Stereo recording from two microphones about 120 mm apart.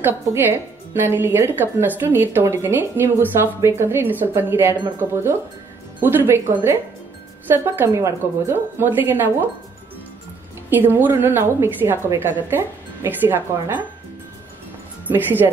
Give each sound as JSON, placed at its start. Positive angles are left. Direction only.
{"t": 0.0, "sound": "a woman's voice", "side_deg": -20}
{"t": 10.7, "sound": "a woman's voice", "side_deg": -15}
{"t": 15.0, "sound": "a woman's voice", "side_deg": -15}